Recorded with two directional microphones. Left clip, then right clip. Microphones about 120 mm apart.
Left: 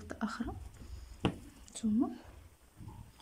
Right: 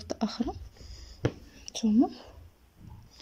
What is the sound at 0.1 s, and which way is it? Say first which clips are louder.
Speech: right 7 dB; 25° right (ahead or behind).